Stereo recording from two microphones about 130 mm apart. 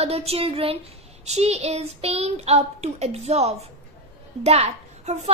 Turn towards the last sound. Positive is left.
turn(degrees=-60)  # may be behind; listen again after turning